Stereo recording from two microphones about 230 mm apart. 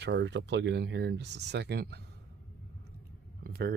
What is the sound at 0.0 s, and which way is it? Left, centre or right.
Speech, right.